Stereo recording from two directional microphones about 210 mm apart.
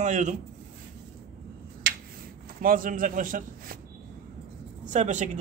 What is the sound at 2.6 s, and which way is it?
A man's voice, 40° right (ahead or behind).